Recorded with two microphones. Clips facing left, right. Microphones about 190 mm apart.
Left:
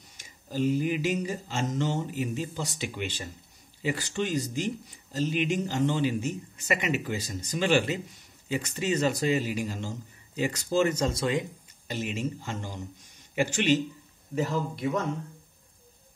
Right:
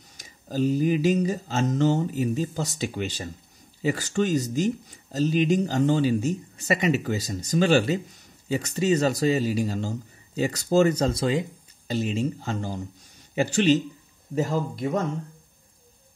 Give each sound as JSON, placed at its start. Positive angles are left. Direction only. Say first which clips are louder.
{"t": 0.2, "sound": "speech", "louder": "right 3 dB", "side_deg": -40}